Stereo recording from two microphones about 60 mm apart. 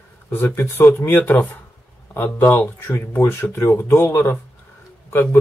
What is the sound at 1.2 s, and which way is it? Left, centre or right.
Speech, left.